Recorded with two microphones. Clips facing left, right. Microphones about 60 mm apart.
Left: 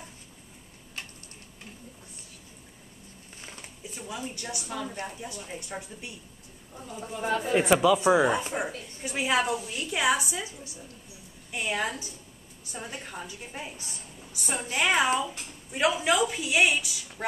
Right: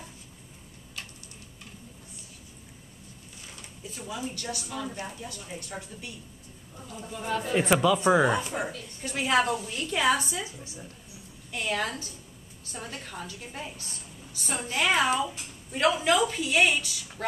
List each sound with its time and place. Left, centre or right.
4.1 s a woman's voice: centre
5.0 s speech: centre
5.3 s a woman's voice: left
7.3 s speech: centre
10.4 s a woman's voice: right
11.5 s speech: centre
14.7 s speech: centre